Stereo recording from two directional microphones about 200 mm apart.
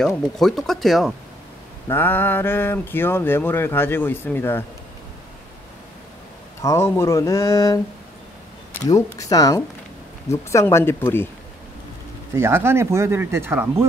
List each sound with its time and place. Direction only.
0.0 s speech: centre (ahead or behind)
1.9 s speech: 10° left (ahead or behind)
6.6 s speech: 15° left (ahead or behind)
8.8 s speech: 15° left (ahead or behind)
12.4 s speech: 10° right (ahead or behind)